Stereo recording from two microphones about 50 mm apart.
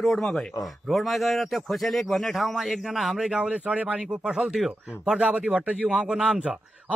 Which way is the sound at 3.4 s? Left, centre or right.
Right.